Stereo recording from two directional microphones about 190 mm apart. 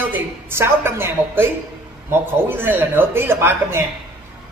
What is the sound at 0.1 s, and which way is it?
A woman's voice, 10° right (ahead or behind).